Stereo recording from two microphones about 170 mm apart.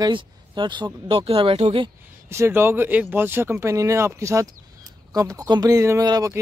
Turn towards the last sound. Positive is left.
turn(degrees=-20)  # may be behind; listen again after turning